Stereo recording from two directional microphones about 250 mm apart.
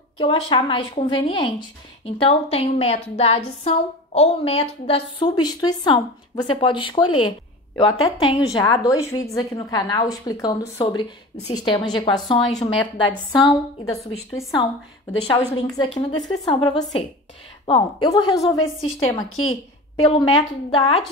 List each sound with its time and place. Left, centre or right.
0.2 s a woman's voice: centre
7.2 s a sound: centre
8.0 s a woman's voice: centre
15.3 s a woman's voice: centre
19.2 s a woman's voice: left
20.0 s a woman's voice: left